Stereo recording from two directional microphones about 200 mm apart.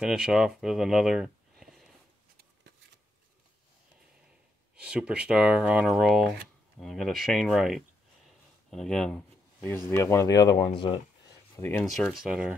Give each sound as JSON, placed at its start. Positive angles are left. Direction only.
{"t": 0.0, "sound": "speech", "side_deg": -5}
{"t": 4.7, "sound": "speech", "side_deg": -5}
{"t": 8.6, "sound": "a sound", "side_deg": 0}
{"t": 9.8, "sound": "speech", "side_deg": 15}
{"t": 11.8, "sound": "speech", "side_deg": 0}